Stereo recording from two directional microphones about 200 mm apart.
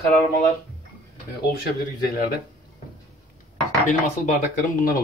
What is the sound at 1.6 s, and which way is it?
Speech, 50° left (ahead or behind).